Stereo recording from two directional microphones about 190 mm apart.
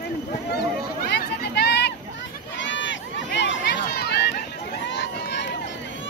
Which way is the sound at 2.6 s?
75° left (ahead or behind).